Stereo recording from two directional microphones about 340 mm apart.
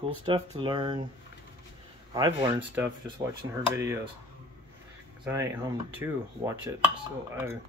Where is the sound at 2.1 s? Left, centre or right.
Centre.